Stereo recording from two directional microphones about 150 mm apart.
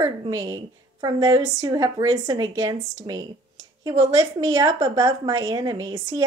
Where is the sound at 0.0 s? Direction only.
20° right (ahead or behind).